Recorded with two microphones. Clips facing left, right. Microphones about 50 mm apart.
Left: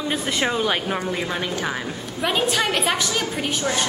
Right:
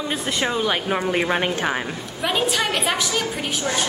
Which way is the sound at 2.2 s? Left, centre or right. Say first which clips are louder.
Even; centre.